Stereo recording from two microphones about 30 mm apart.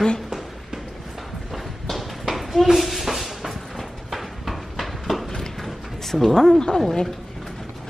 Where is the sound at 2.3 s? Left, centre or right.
Centre.